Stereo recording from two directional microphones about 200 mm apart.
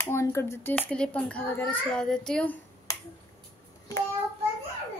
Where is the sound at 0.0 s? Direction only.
15° left (ahead or behind).